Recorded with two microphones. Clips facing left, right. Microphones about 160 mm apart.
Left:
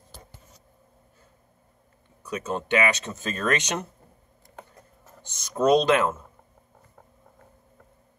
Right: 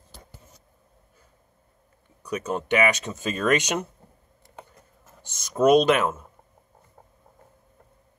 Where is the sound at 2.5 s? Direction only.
10° right (ahead or behind).